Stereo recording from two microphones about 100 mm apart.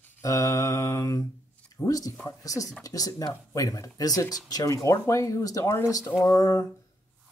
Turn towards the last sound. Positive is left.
turn(degrees=30)  # may be behind; listen again after turning